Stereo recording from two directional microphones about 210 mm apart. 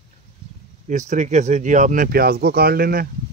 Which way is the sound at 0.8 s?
35° right (ahead or behind).